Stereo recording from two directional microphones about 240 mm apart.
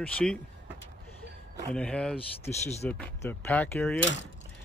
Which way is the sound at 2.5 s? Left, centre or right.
Left.